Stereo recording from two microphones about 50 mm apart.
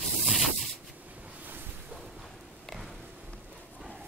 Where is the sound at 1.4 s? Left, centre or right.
Right.